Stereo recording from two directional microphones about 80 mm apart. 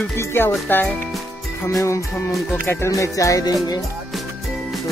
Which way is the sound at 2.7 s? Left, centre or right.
Left.